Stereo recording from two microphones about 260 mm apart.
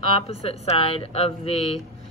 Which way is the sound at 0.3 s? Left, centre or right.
Left.